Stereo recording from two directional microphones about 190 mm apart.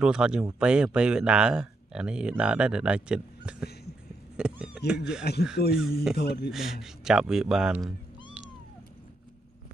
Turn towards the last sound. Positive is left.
turn(degrees=-5)  # may be behind; listen again after turning